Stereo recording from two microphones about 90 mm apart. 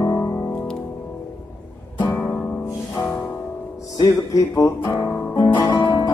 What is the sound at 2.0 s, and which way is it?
Music, 15° left (ahead or behind).